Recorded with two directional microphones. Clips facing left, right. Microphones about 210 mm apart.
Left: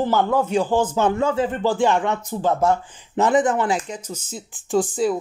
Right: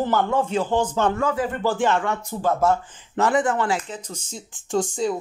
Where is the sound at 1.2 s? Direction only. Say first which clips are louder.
Left 3 dB; 25° left (ahead or behind).